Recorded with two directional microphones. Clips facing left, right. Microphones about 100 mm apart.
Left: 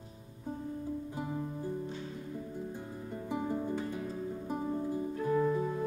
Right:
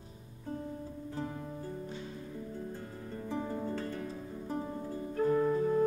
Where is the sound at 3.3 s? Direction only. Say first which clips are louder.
Left 2 dB; 15° left (ahead or behind).